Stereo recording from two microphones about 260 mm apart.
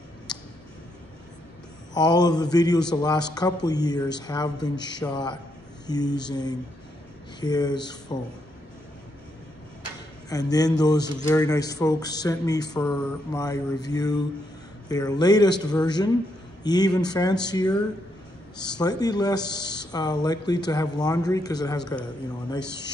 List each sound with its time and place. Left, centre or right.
2.0 s speech: centre
10.3 s speech: centre